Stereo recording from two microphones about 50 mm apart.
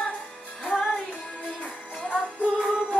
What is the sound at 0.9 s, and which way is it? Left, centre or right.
Music, left.